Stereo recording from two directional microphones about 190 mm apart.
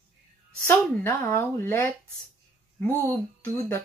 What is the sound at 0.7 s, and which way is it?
Speech, 15° left (ahead or behind).